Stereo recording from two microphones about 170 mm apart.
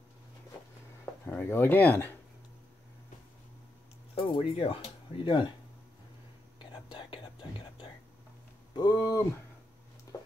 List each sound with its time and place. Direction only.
1.2 s speech: 15° left (ahead or behind)
4.1 s speech: 35° left (ahead or behind)
6.6 s whispering: 30° left (ahead or behind)
8.7 s speech: 20° left (ahead or behind)
10.1 s a sound: 20° left (ahead or behind)